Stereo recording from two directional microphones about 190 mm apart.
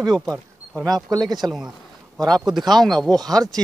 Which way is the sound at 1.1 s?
20° right (ahead or behind).